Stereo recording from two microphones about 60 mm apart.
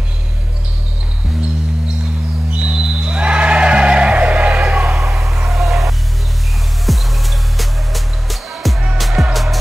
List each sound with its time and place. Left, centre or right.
2.5 s music: right
5.1 s a sound: centre
6.9 s music: centre